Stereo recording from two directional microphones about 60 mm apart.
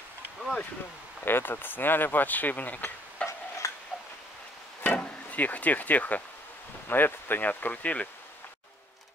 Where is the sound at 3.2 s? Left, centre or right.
Centre.